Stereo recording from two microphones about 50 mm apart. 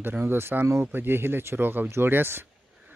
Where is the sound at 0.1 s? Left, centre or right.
Right.